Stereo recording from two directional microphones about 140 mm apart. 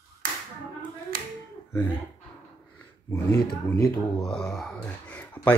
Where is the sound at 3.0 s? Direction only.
20° left (ahead or behind).